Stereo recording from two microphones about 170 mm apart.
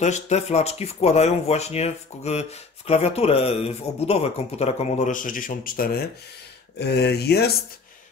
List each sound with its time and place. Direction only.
0.0 s speech: 40° left (ahead or behind); by 6.0 s 60° left (ahead or behind)
6.8 s speech: 80° left